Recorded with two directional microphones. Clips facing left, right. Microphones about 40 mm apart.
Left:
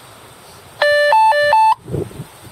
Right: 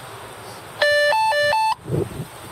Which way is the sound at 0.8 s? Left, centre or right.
Left.